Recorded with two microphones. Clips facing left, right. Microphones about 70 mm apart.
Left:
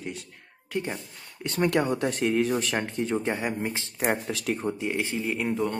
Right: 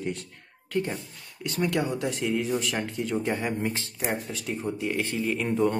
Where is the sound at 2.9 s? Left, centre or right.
Left.